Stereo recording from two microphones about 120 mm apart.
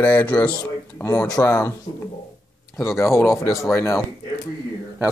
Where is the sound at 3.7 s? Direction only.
25° left (ahead or behind).